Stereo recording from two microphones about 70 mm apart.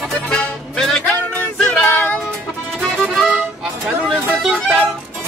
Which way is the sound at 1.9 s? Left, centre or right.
Left.